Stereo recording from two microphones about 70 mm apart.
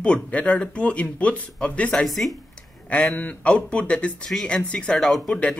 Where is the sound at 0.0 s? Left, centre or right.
Centre.